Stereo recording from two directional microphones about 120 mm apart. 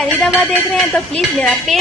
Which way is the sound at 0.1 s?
15° left (ahead or behind).